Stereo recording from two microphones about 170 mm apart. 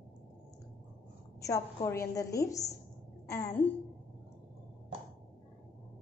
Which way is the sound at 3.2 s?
20° left (ahead or behind).